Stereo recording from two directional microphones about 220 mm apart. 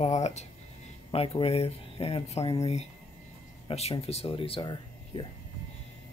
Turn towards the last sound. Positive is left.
turn(degrees=25)  # may be behind; listen again after turning